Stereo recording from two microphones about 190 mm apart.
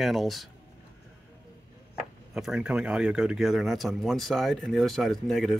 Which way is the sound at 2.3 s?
5° right (ahead or behind).